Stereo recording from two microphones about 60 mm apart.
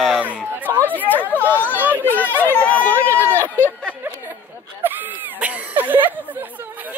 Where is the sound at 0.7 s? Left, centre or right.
Right.